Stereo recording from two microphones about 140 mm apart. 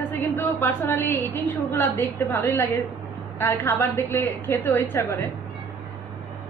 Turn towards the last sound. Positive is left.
turn(degrees=20)  # may be behind; listen again after turning